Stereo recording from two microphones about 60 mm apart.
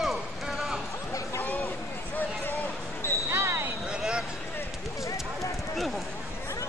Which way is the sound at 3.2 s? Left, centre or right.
Right.